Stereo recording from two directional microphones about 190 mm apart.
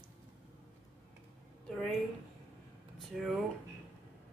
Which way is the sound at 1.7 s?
5° left (ahead or behind).